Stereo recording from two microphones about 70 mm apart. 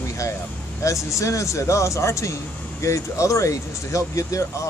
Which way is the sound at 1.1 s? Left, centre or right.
Left.